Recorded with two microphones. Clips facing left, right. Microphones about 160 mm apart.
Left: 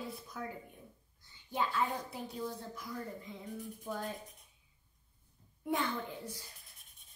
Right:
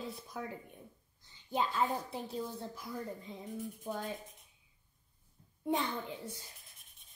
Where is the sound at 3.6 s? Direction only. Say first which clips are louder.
Even; 20° right (ahead or behind).